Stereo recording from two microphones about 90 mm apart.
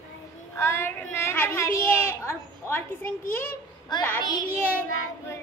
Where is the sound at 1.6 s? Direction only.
35° left (ahead or behind).